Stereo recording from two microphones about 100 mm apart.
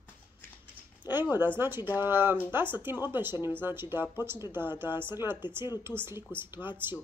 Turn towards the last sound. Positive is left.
turn(degrees=-20)  # may be behind; listen again after turning